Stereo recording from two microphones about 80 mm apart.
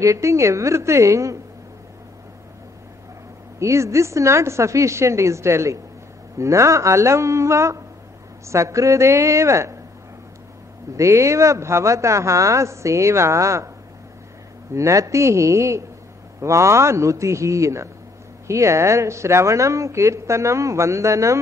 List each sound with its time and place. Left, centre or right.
0.0 s a woman's voice: right
3.5 s a woman's voice: right
11.0 s a woman's voice: right
14.7 s a woman's voice: right